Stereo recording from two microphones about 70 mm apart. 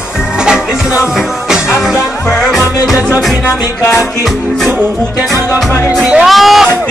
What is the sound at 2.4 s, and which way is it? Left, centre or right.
Music, centre.